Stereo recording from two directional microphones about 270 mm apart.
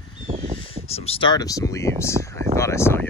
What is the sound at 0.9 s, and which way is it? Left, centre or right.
Speech, left.